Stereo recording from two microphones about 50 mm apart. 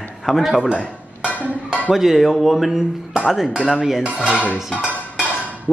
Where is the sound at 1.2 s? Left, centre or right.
Right.